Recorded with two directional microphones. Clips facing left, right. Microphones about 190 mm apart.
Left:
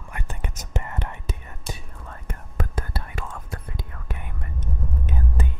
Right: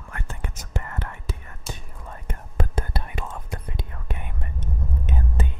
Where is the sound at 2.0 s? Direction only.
15° right (ahead or behind).